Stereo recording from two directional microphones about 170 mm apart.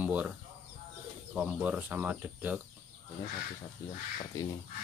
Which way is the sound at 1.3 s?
5° right (ahead or behind).